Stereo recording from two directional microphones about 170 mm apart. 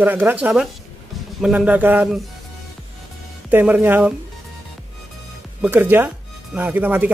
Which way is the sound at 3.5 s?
10° right (ahead or behind).